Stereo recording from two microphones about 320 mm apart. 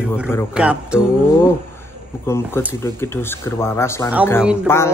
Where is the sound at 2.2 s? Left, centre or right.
Centre.